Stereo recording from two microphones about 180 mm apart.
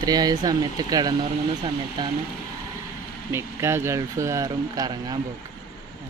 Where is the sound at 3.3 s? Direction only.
15° right (ahead or behind).